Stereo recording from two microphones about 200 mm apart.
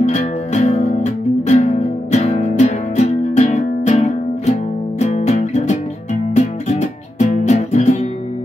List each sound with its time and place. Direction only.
0.0 s music: 35° left (ahead or behind)